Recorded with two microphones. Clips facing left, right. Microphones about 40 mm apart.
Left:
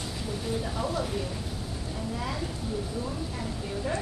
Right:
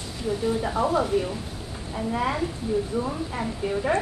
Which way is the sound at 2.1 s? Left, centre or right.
Right.